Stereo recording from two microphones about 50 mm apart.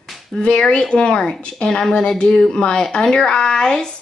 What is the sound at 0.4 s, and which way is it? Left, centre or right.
Speech, left.